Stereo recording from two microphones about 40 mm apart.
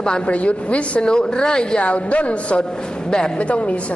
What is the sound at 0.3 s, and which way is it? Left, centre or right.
Speech, left.